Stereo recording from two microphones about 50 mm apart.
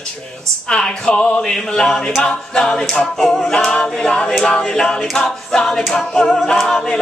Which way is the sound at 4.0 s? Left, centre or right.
Centre.